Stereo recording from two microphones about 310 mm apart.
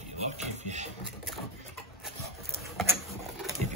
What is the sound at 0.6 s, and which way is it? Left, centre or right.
Printer, right.